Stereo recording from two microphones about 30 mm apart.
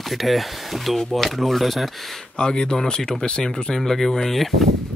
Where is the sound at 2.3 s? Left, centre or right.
Left.